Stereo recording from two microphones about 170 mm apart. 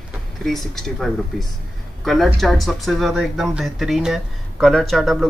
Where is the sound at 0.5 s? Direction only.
Centre (ahead or behind).